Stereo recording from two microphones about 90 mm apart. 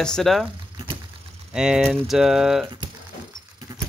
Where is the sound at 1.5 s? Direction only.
10° right (ahead or behind).